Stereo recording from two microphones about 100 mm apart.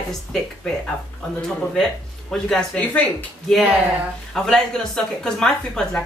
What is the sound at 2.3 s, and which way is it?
Speech, 5° left (ahead or behind).